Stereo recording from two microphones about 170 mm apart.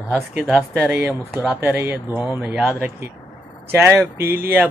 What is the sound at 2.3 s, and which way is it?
Speech, centre (ahead or behind).